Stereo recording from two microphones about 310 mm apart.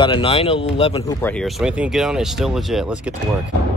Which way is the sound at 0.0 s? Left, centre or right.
Centre.